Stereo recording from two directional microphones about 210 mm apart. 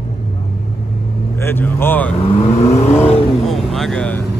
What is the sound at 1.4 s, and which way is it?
Speech, 10° left (ahead or behind).